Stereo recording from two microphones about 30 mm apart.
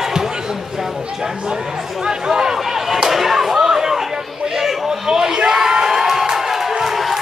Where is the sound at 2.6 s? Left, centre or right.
Centre.